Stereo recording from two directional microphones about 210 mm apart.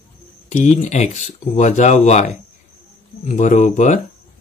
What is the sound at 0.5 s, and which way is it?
Speech, 35° left (ahead or behind).